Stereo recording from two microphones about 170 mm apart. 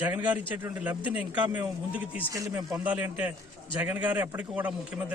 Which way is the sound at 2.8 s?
10° right (ahead or behind).